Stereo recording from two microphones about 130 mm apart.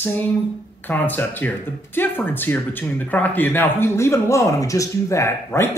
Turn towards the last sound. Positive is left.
turn(degrees=20)  # may be behind; listen again after turning